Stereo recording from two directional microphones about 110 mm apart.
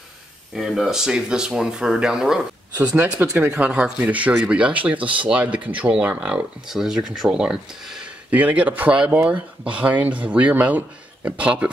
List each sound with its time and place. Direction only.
0.6 s speech: 5° right (ahead or behind)